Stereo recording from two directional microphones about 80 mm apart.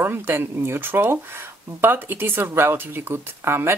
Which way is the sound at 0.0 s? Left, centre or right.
Right.